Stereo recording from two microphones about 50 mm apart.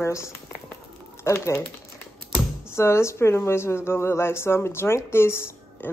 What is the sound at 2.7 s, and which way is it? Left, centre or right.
Speech, left.